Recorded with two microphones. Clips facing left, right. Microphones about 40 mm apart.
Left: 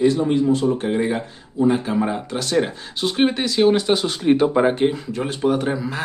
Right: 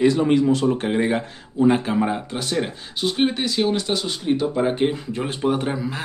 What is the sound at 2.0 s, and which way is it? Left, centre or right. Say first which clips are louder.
Speech: even; centre.